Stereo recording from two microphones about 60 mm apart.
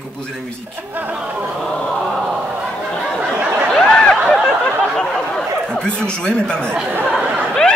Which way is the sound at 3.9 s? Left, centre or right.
Centre.